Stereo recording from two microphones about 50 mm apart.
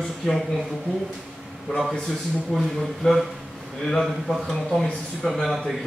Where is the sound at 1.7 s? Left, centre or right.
Centre.